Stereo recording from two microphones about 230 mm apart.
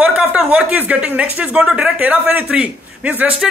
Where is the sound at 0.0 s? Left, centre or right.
Centre.